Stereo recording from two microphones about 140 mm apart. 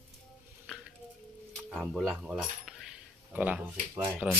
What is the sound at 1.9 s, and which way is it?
Speech, centre (ahead or behind).